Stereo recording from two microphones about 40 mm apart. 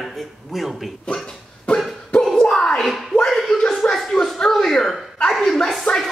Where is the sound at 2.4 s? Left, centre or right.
Centre.